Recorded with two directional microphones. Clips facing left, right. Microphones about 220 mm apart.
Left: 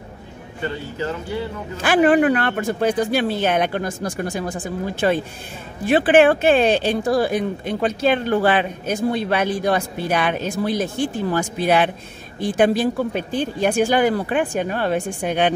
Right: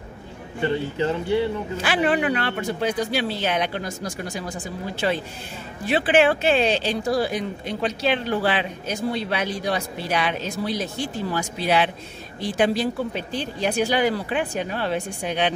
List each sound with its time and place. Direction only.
0.6 s speech: 25° right (ahead or behind)
1.8 s speech: 50° left (ahead or behind)